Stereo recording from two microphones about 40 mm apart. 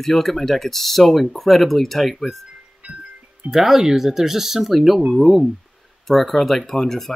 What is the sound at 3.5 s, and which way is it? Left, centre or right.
Speech, centre.